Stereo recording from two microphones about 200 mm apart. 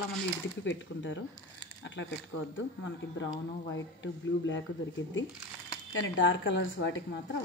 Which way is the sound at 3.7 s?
70° left (ahead or behind).